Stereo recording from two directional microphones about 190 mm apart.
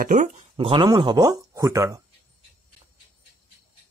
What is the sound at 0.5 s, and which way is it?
Speech, 25° right (ahead or behind).